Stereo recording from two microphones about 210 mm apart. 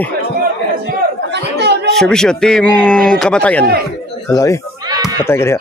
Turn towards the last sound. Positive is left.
turn(degrees=10)  # may be behind; listen again after turning